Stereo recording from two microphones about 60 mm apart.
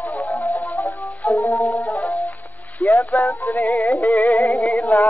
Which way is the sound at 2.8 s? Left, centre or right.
Left.